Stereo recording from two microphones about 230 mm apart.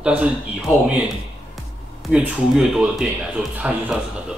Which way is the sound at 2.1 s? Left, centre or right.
Centre.